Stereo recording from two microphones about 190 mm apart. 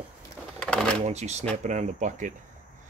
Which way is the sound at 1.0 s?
35° right (ahead or behind).